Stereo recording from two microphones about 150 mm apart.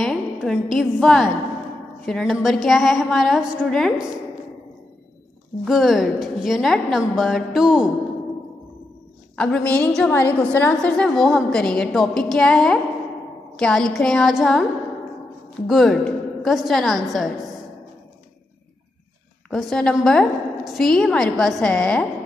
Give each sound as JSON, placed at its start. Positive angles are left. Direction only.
{"t": 0.0, "sound": "a sound", "side_deg": 0}
{"t": 2.0, "sound": "a woman's voice", "side_deg": 0}
{"t": 5.7, "sound": "a woman's voice", "side_deg": 0}
{"t": 9.4, "sound": "a woman's voice", "side_deg": 10}
{"t": 15.6, "sound": "a woman's voice", "side_deg": 0}
{"t": 19.5, "sound": "a woman's voice", "side_deg": 5}